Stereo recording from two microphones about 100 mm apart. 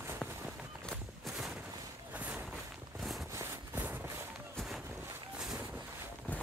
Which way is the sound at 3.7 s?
20° right (ahead or behind).